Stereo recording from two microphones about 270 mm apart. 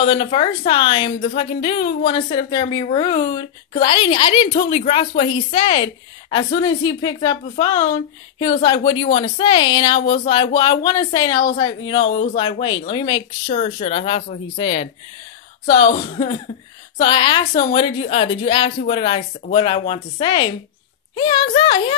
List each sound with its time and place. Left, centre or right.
0.1 s a woman's voice: centre